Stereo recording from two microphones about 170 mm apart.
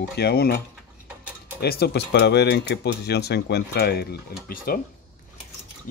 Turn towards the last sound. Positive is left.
turn(degrees=60)  # may be behind; listen again after turning